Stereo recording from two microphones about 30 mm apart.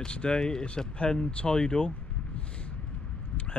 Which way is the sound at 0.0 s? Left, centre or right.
Left.